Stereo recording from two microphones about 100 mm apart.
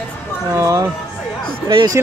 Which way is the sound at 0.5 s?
30° right (ahead or behind).